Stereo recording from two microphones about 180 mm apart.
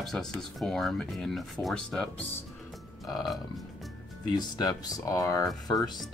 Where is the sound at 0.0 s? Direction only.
5° left (ahead or behind).